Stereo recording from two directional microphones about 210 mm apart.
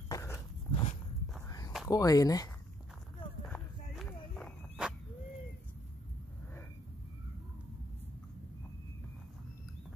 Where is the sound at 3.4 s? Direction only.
5° left (ahead or behind).